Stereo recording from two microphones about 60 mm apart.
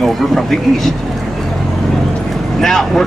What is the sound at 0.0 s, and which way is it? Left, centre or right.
Speech, centre.